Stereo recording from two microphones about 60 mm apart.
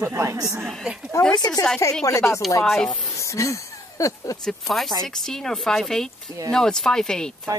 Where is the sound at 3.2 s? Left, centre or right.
Left.